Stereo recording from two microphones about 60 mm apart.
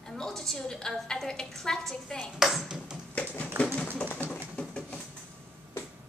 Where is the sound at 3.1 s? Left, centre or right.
Left.